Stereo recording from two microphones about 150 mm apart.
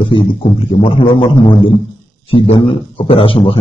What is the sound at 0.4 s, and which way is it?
Speech, 45° left (ahead or behind).